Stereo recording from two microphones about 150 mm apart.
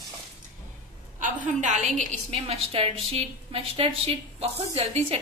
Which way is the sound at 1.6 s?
55° right (ahead or behind).